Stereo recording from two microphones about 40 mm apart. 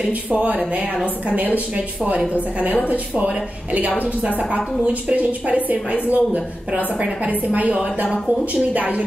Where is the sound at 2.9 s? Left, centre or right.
Right.